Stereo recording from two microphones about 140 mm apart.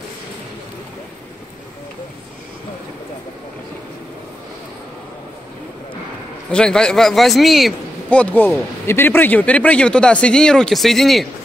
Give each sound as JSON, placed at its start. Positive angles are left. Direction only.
{"t": 6.5, "sound": "a man's voice", "side_deg": 5}